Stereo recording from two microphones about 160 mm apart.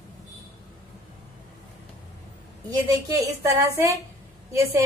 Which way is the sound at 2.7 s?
20° right (ahead or behind).